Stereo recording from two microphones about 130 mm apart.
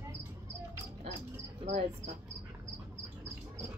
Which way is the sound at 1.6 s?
60° right (ahead or behind).